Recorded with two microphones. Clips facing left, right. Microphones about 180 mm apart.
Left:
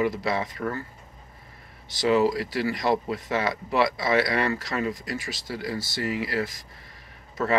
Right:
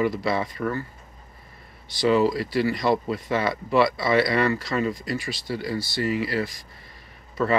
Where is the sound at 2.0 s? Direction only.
15° left (ahead or behind).